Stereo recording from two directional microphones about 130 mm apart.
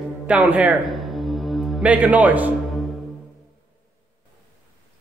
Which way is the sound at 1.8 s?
10° right (ahead or behind).